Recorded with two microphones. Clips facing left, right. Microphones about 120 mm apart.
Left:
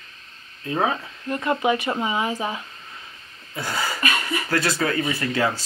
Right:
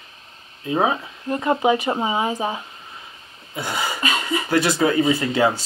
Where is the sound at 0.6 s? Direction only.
15° right (ahead or behind).